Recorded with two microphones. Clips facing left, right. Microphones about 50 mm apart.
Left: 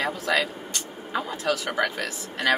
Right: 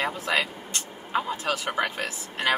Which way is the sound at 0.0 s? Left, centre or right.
Right.